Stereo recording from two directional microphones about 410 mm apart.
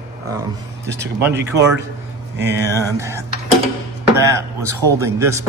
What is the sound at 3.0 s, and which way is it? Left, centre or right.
A man's voice, centre.